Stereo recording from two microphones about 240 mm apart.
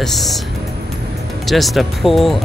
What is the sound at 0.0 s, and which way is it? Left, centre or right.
Speech, centre.